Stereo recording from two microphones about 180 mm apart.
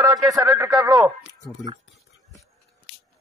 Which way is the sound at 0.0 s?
20° right (ahead or behind).